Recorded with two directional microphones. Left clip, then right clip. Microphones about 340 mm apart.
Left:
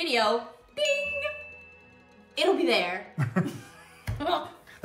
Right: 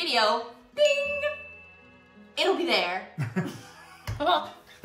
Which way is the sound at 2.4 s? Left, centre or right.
Centre.